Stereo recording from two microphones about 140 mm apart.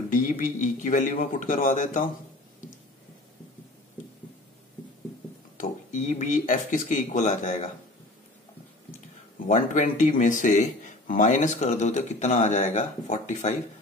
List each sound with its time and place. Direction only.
0.1 s a man's voice: 75° left (ahead or behind)
5.6 s speech: 65° left (ahead or behind)
9.5 s speech: 65° left (ahead or behind)